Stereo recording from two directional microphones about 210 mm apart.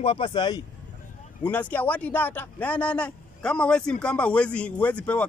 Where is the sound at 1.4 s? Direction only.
10° left (ahead or behind).